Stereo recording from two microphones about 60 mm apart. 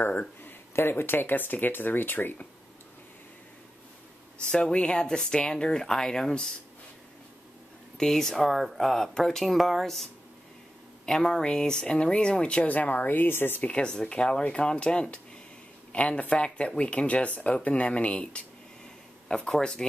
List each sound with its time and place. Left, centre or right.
0.0 s speech: left
4.5 s speech: centre
8.0 s speech: centre
11.1 s speech: centre; by 13.6 s left
13.6 s speech: left
19.2 s speech: centre